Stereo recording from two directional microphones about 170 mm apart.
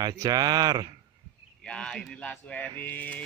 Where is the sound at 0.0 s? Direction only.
20° right (ahead or behind).